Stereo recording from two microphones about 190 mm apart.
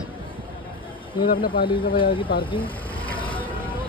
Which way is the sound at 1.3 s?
50° left (ahead or behind).